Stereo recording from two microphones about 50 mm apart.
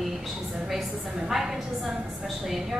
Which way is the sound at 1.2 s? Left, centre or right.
Centre.